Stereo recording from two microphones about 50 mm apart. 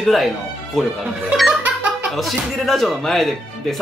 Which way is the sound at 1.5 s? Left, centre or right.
Right.